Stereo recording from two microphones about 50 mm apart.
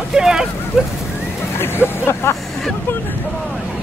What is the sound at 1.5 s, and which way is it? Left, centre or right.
Speech, left.